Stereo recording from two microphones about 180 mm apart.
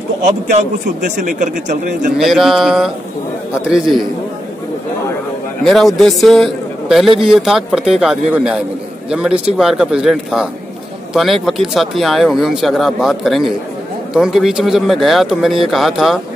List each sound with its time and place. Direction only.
0.2 s a man's voice: 40° right (ahead or behind)
2.1 s a man's voice: centre (ahead or behind)
5.6 s a man's voice: centre (ahead or behind)